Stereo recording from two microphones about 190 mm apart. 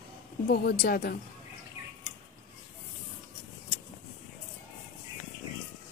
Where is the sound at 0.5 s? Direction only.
55° left (ahead or behind).